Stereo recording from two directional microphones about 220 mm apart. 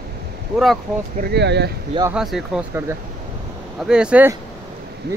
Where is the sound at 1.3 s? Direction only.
50° right (ahead or behind).